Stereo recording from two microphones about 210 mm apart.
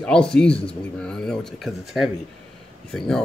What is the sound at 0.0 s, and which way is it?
Speech, 5° left (ahead or behind).